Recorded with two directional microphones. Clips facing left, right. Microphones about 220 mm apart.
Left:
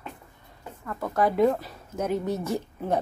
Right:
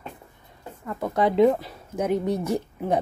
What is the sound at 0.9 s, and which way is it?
Speech, 20° right (ahead or behind).